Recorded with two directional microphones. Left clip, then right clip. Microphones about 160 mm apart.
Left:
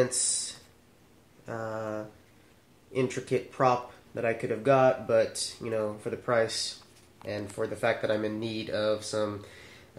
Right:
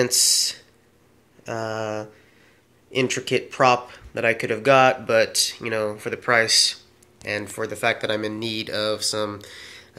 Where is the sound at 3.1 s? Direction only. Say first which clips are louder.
Right 7 dB; 35° right (ahead or behind).